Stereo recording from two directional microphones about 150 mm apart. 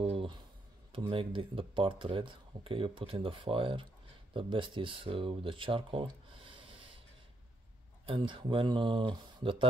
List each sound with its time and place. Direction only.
0.0 s a sound: 40° right (ahead or behind)
0.9 s speech: 35° right (ahead or behind)
8.0 s speech: 35° right (ahead or behind)